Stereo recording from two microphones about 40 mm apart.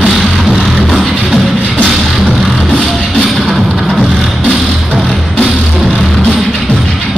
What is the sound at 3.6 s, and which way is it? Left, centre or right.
Music, centre.